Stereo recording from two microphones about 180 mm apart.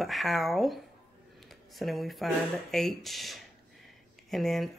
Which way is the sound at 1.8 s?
Centre (ahead or behind).